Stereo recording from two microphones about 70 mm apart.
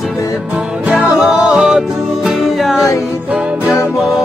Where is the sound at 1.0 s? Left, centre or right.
Right.